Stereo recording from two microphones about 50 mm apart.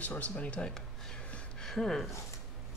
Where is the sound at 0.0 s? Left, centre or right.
Left.